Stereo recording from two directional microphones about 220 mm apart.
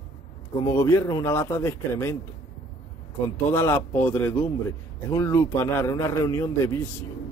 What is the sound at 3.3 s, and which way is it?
A man's voice, 10° left (ahead or behind).